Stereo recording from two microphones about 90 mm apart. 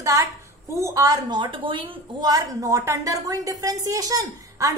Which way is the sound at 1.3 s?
65° right (ahead or behind).